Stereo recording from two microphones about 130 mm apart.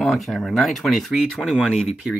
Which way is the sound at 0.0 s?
Centre (ahead or behind).